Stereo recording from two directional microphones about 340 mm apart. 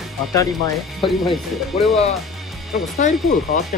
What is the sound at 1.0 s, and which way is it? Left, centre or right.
Speech, centre.